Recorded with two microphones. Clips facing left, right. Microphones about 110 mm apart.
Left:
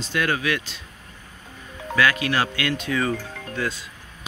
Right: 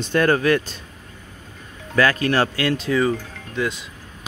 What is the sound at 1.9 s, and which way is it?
Speech, 40° right (ahead or behind).